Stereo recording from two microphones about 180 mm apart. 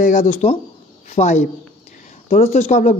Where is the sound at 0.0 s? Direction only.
40° left (ahead or behind).